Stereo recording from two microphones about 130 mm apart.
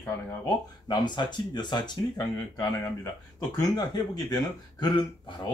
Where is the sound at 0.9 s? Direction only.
35° left (ahead or behind).